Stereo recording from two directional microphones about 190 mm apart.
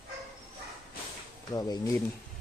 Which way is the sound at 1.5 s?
20° left (ahead or behind).